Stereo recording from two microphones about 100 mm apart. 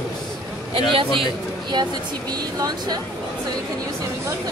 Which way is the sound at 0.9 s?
60° right (ahead or behind).